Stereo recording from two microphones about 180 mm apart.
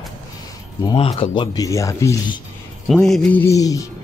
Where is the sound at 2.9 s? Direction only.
Centre (ahead or behind); by 3.9 s 20° left (ahead or behind).